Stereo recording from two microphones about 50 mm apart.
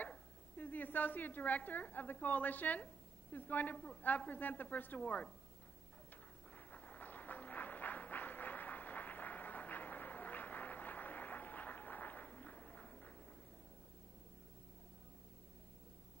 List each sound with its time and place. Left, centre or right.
0.6 s a woman's voice: left
3.7 s a woman's voice: left
4.3 s speech: left
6.5 s a sound: left